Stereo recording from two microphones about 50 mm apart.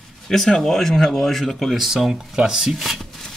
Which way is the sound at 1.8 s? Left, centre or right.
Centre.